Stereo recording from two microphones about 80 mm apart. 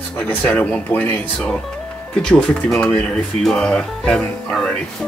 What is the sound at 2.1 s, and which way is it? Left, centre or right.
Speech, centre.